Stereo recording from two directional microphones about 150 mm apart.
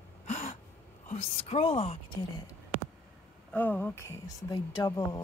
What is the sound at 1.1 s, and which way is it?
A woman's voice, 40° left (ahead or behind).